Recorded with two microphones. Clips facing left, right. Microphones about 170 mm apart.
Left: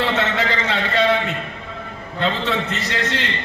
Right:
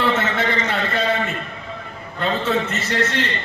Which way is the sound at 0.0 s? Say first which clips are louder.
Even; 80° left.